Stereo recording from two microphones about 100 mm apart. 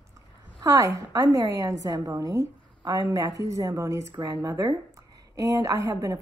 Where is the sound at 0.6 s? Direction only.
30° right (ahead or behind).